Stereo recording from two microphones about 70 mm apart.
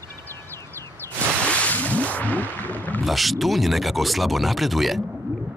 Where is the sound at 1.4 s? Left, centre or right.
Centre.